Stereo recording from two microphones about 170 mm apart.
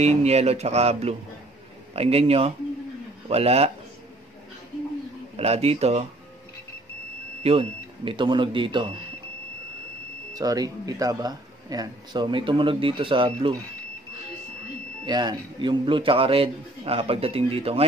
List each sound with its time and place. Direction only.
0.0 s a man's voice: 40° right (ahead or behind)
5.4 s a man's voice: 35° right (ahead or behind)
7.4 s a man's voice: 35° right (ahead or behind)
10.3 s a man's voice: 20° right (ahead or behind)
15.0 s a man's voice: 25° right (ahead or behind)